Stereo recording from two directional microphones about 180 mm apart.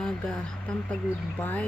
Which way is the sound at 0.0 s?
5° left (ahead or behind).